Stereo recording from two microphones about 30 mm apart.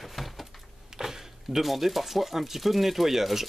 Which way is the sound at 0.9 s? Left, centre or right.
Centre.